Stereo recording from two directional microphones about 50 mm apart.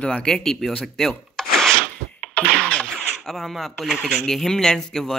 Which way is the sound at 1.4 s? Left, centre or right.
Centre.